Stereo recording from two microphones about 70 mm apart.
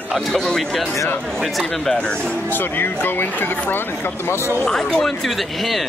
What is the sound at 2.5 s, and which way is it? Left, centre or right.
Speech, left.